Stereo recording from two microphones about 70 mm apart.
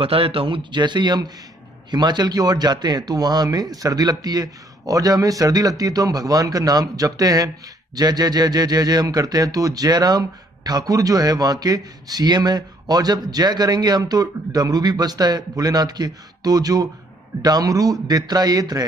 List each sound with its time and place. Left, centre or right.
0.7 s speech: right